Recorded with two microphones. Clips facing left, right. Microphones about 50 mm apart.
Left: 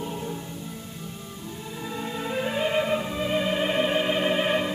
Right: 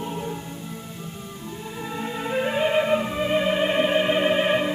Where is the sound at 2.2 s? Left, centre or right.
Centre.